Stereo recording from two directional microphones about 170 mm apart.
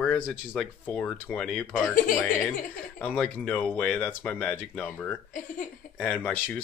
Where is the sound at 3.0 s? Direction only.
5° left (ahead or behind).